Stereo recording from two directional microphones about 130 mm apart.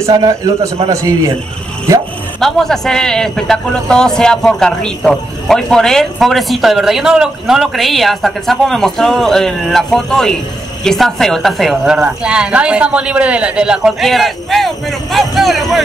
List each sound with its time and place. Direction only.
0.0 s a man's voice: 25° right (ahead or behind)
2.4 s speech: 5° left (ahead or behind)